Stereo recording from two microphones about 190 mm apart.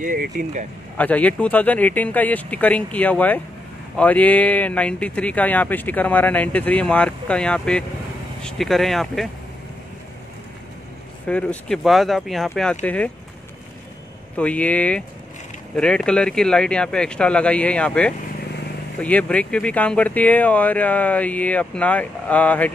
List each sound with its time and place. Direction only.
0.0 s speech: 45° right (ahead or behind)
0.9 s speech: 10° left (ahead or behind)
11.2 s speech: 5° left (ahead or behind)
14.3 s speech: 5° left (ahead or behind)